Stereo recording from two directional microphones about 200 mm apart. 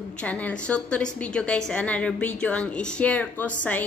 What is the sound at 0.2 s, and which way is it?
A woman's voice, 5° left (ahead or behind).